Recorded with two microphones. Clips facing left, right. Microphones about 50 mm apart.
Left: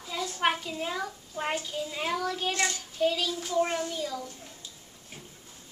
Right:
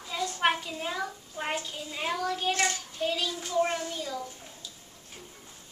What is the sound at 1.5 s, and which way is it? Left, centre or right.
A child's voice, centre.